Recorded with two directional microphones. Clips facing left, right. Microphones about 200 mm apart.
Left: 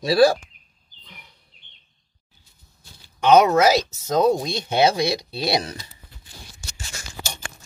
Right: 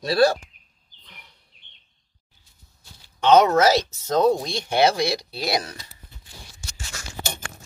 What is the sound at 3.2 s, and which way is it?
Speech, 15° left (ahead or behind).